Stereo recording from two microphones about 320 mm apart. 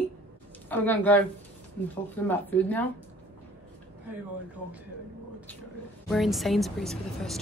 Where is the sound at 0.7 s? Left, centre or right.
Centre.